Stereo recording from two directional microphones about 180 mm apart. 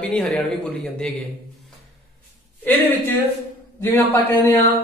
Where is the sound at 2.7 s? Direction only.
10° left (ahead or behind).